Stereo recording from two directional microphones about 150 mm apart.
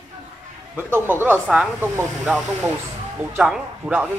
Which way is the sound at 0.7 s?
15° right (ahead or behind).